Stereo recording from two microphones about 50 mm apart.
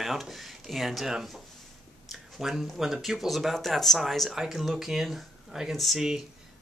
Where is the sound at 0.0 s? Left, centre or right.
Centre.